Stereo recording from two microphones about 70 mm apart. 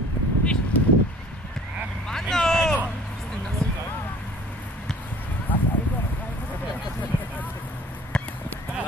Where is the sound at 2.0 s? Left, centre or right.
Centre.